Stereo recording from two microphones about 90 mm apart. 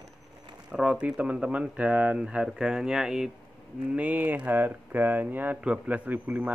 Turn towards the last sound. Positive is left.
turn(degrees=-15)  # may be behind; listen again after turning